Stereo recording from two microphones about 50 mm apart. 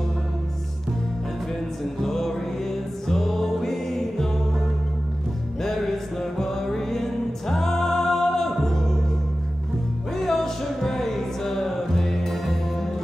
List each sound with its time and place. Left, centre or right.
2.0 s music: centre
5.6 s music: centre
10.1 s music: centre